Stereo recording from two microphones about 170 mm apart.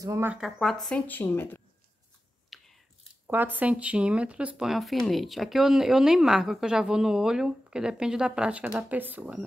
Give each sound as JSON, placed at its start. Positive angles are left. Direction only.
{"t": 0.0, "sound": "speech", "side_deg": -20}
{"t": 0.3, "sound": "speech", "side_deg": 0}
{"t": 2.5, "sound": "a sound", "side_deg": 0}
{"t": 3.3, "sound": "speech", "side_deg": -10}